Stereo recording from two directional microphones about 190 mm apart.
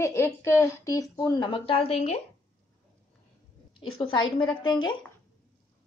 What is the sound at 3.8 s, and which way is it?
A woman's voice, 25° left (ahead or behind).